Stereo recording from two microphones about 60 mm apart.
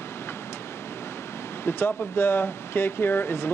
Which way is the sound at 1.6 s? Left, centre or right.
Left.